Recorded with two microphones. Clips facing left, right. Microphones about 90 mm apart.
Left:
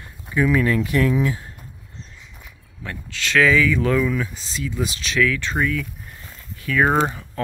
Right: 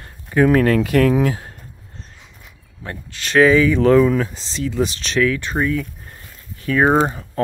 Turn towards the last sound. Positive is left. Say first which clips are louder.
# right 3 dB
turn(degrees=-30)  # may be behind; listen again after turning